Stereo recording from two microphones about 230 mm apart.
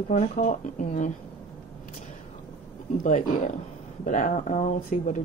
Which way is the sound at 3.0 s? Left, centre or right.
Left.